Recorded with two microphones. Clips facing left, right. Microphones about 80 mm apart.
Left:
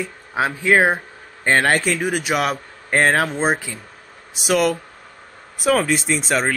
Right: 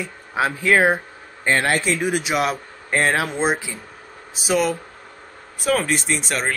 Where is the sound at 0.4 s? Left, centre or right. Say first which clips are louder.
Left 1 dB; left.